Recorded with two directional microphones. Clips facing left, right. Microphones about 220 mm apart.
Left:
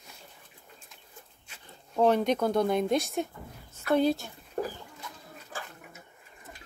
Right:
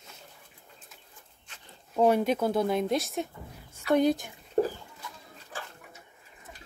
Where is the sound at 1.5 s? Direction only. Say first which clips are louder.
Right 1 dB; 10° left (ahead or behind).